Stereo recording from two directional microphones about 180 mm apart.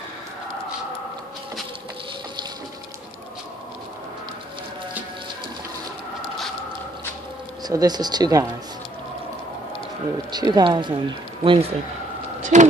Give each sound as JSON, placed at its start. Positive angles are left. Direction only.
{"t": 7.6, "sound": "speech", "side_deg": -20}
{"t": 10.3, "sound": "speech", "side_deg": -25}
{"t": 12.4, "sound": "a sound", "side_deg": -40}